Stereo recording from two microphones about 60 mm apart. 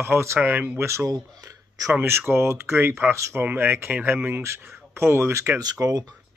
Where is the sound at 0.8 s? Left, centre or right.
Right.